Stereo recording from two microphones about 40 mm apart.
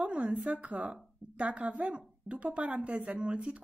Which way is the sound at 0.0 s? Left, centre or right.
Right.